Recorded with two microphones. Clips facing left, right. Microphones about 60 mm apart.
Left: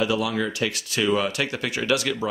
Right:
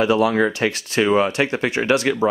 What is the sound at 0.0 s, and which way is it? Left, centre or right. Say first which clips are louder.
Speech: right 7 dB; right.